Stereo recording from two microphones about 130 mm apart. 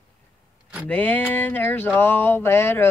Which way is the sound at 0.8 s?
10° left (ahead or behind).